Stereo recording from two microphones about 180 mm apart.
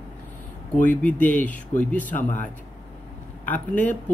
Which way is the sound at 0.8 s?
10° left (ahead or behind).